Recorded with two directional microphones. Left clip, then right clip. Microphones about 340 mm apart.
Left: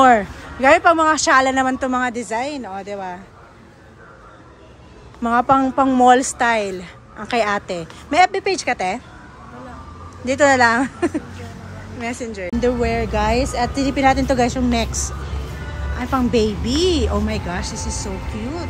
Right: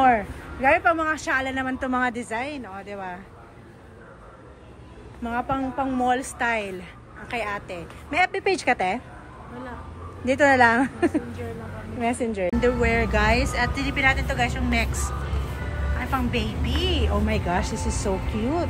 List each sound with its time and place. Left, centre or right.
0.0 s speech: centre
5.2 s speech: centre
10.2 s speech: centre